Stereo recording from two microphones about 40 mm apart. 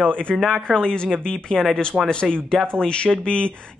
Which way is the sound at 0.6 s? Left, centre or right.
Centre.